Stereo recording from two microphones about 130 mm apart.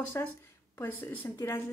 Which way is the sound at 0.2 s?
20° left (ahead or behind).